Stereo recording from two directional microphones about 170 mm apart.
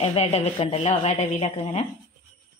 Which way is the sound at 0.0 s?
35° left (ahead or behind).